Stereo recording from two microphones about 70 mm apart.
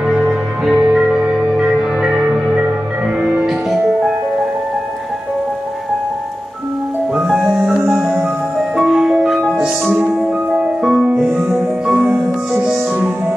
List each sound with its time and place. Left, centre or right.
0.0 s music: centre
3.4 s music: centre
7.2 s music: centre; by 13.1 s right